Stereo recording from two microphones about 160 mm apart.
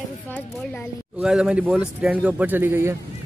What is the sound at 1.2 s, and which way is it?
A man's voice, 5° right (ahead or behind).